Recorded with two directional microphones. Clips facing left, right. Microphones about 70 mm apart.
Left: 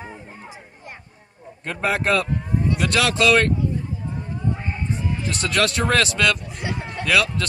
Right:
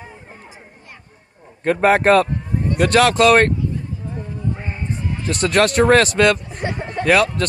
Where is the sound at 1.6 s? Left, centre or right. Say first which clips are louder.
Right 9 dB; right.